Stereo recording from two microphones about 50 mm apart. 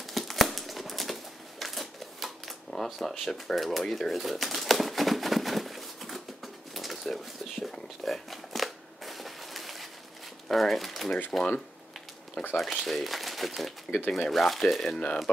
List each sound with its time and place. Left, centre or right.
0.0 s a sound: centre
2.7 s speech: centre
3.8 s speech: centre
4.1 s a sound: centre
10.5 s typewriter: centre
11.3 s speech: centre
12.4 s speech: centre
13.8 s speech: left
14.1 s speech: centre